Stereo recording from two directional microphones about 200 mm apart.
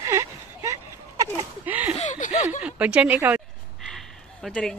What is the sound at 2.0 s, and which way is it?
Chuckle, 40° left (ahead or behind).